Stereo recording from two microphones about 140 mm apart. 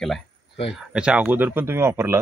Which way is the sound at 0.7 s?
5° right (ahead or behind).